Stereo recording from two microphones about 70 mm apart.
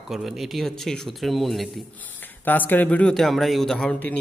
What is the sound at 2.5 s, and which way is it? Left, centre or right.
Speech, left.